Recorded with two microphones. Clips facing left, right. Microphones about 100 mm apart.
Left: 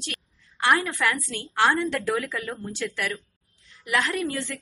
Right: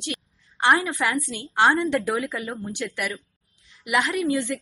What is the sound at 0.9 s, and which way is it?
A woman's voice, 20° right (ahead or behind).